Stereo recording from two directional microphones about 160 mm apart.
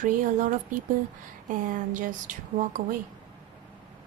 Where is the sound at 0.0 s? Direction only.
55° right (ahead or behind).